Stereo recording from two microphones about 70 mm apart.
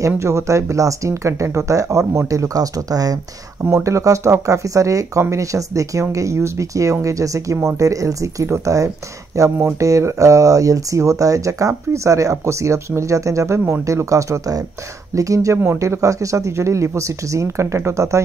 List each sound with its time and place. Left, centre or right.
0.0 s speech: right
3.7 s speech: right